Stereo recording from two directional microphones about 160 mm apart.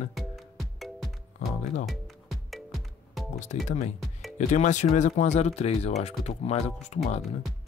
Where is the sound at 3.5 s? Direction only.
50° left (ahead or behind).